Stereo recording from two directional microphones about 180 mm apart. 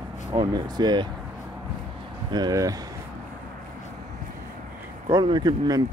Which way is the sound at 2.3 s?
20° right (ahead or behind).